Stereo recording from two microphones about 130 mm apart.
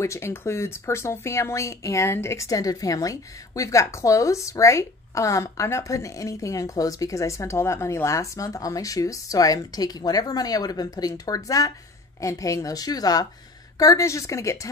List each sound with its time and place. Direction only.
0.0 s speech: 20° left (ahead or behind)